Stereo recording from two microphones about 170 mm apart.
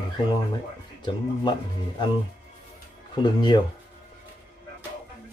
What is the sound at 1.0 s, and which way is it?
Speech, 25° left (ahead or behind).